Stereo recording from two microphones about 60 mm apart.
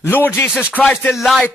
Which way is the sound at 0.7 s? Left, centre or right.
Left.